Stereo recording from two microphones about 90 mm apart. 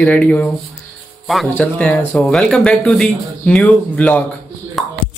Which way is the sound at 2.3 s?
5° left (ahead or behind).